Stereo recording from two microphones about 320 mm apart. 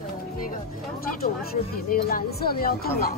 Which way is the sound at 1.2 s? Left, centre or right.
Left.